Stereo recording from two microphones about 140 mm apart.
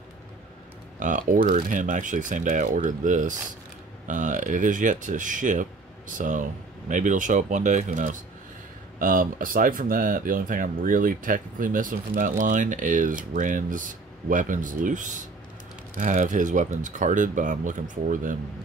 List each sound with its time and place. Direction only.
0.9 s speech: 65° right (ahead or behind)
9.0 s speech: 80° right